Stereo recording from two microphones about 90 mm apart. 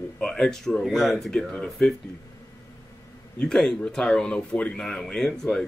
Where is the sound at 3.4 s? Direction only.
5° left (ahead or behind).